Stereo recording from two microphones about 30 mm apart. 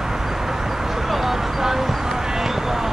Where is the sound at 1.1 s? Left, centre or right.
Centre.